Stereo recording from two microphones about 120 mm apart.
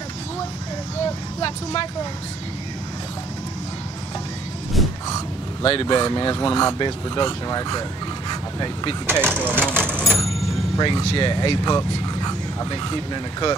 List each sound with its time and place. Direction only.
1.4 s speech: 45° left (ahead or behind)
5.6 s speech: 45° left (ahead or behind)
5.9 s speech: 35° left (ahead or behind)
8.3 s vehicle: 35° left (ahead or behind)
9.0 s speech: 20° right (ahead or behind)
9.6 s vehicle: 15° right (ahead or behind)
10.8 s speech: 40° left (ahead or behind)